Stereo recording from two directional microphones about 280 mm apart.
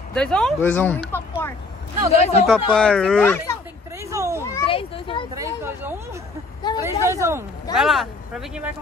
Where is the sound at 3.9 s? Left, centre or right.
Centre.